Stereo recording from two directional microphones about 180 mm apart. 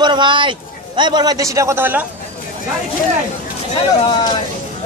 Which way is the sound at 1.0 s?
25° right (ahead or behind).